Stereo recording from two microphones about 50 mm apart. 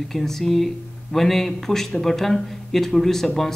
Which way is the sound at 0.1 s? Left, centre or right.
Centre.